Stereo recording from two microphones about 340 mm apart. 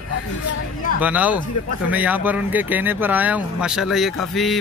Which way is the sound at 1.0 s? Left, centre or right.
Centre.